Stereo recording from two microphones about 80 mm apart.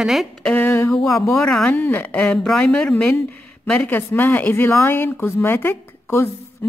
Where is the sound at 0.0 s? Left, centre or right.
Centre.